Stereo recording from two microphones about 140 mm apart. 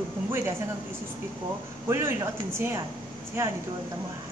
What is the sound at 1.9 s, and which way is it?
Speech, 20° right (ahead or behind).